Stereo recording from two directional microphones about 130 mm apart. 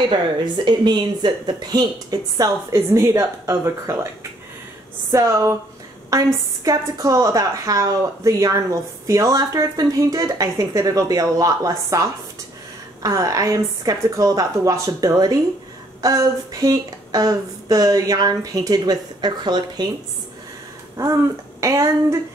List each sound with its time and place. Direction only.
0.7 s a woman's voice: 35° right (ahead or behind)
21.0 s a woman's voice: 25° right (ahead or behind)